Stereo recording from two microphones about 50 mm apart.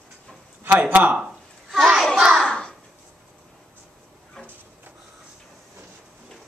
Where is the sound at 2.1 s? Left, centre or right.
Centre.